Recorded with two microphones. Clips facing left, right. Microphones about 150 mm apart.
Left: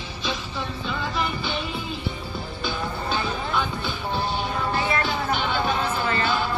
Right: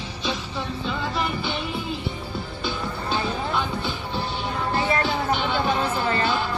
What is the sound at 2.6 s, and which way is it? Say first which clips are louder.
Music: left 1 dB; 25° right (ahead or behind).